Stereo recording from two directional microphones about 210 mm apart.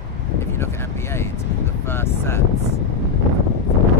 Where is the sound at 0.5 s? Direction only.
10° left (ahead or behind).